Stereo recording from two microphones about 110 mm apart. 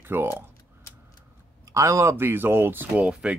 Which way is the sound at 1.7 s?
25° right (ahead or behind).